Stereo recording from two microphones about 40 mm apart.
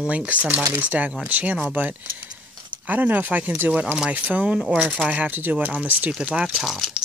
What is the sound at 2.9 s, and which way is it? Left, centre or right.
Speech, right.